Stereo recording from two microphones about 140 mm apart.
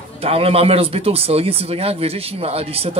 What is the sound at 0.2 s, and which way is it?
Speech, 45° right (ahead or behind).